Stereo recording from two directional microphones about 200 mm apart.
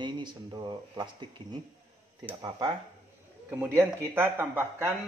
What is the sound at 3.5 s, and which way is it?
Speech, 15° right (ahead or behind).